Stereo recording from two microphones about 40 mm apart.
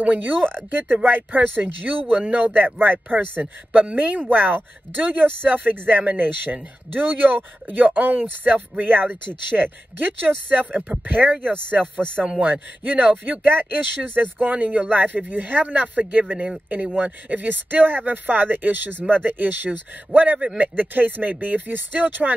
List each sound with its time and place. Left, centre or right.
0.0 s speech: right
0.4 s speech: centre
0.7 s speech: right
3.9 s speech: right
4.3 s speech: right
12.0 s speech: right
12.4 s speech: right
13.5 s speech: right
14.9 s speech: right